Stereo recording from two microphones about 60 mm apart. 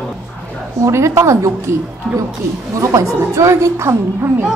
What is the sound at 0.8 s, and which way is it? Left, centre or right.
A woman's voice, right.